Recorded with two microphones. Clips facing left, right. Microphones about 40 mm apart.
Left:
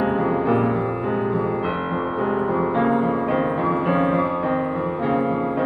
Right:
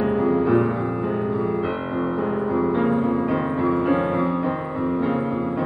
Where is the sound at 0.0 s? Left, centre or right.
Centre.